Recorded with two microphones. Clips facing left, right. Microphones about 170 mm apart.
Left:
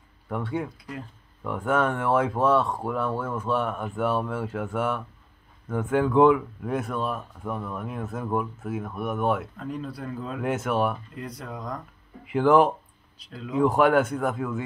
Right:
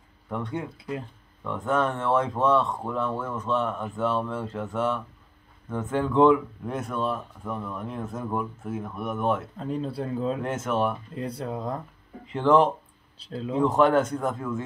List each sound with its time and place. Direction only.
0.3 s speech: 5° left (ahead or behind)
0.7 s speech: 25° right (ahead or behind)
1.4 s speech: 10° left (ahead or behind)
9.6 s speech: 30° right (ahead or behind)
10.4 s speech: 5° left (ahead or behind)
11.1 s speech: 30° right (ahead or behind)
12.3 s speech: 10° left (ahead or behind)
13.2 s speech: 30° right (ahead or behind)
13.7 s speech: 10° left (ahead or behind)